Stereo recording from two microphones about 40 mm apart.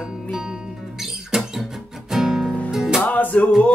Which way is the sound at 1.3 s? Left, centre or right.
Centre.